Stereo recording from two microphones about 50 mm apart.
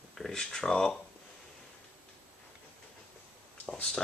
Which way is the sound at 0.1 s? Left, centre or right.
Centre.